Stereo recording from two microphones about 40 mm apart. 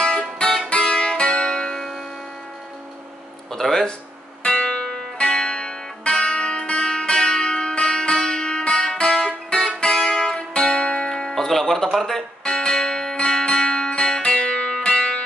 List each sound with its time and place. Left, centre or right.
0.0 s music: left
3.5 s music: centre
4.4 s music: left
11.4 s music: centre
12.4 s music: left